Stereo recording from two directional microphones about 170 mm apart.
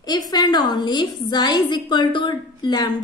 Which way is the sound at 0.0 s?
25° left (ahead or behind).